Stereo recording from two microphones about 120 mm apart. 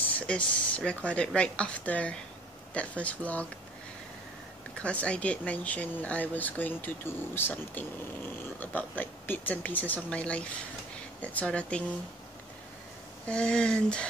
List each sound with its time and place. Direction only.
0.3 s speech: 10° left (ahead or behind)
4.7 s speech: 10° left (ahead or behind)
13.3 s speech: 10° left (ahead or behind)